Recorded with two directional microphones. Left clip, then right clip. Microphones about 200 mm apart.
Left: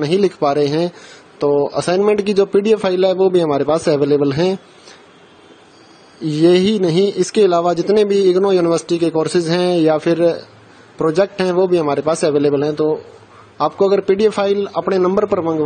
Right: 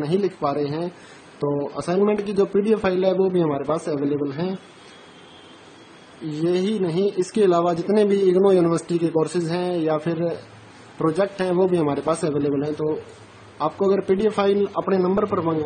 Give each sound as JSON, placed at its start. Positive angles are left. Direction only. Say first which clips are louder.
{"t": 0.0, "sound": "speech", "louder": "left 7 dB", "side_deg": 35}
{"t": 6.3, "sound": "speech", "louder": "left 10 dB", "side_deg": 35}